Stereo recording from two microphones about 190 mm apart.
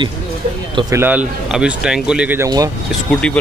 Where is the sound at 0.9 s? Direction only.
10° right (ahead or behind).